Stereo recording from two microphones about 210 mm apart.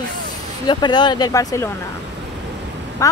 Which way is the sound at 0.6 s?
20° left (ahead or behind).